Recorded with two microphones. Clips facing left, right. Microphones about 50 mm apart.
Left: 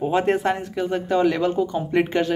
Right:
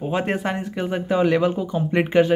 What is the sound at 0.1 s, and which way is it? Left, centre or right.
Speech, centre.